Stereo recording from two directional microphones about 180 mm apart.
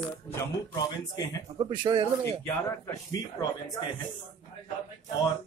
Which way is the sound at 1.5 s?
25° right (ahead or behind).